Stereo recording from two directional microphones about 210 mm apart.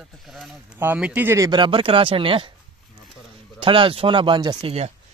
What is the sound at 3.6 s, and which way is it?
Speech, 25° right (ahead or behind).